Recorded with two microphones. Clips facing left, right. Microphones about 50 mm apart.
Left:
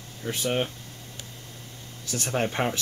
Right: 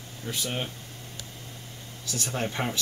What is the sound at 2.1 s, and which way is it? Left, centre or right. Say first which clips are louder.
Speech: left 4 dB; left.